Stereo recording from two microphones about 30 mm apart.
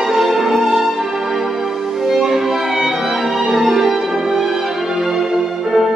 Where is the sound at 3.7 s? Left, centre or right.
Centre.